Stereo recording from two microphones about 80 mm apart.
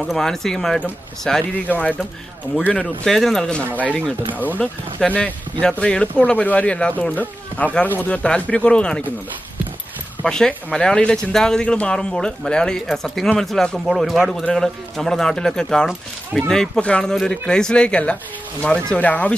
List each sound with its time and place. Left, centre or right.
0.1 s speech: centre
1.5 s speech: left
3.1 s speech: centre
4.3 s speech: right
4.6 s speech: centre
10.2 s speech: centre